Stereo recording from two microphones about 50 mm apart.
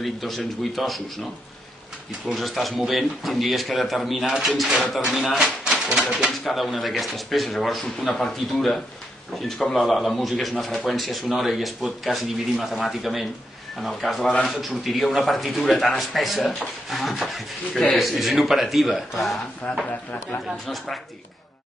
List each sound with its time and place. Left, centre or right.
0.0 s a man's voice: centre
2.3 s a man's voice: centre
6.3 s a man's voice: centre
14.2 s speech: left
14.5 s a man's voice: centre
19.6 s speech: left
20.6 s speech: centre